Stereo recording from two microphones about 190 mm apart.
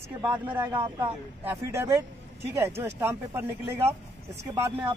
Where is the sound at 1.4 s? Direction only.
15° right (ahead or behind).